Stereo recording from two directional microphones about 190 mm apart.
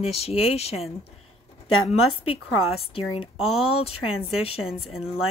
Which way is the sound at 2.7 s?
30° left (ahead or behind).